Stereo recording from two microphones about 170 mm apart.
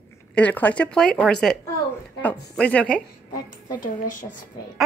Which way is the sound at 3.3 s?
55° left (ahead or behind).